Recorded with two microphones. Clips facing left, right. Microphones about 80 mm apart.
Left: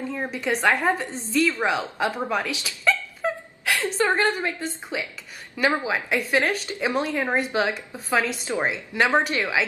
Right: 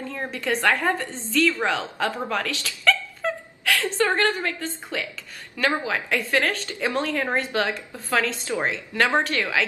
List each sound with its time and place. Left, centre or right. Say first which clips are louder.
0.1 s a woman's voice: right 1 dB; centre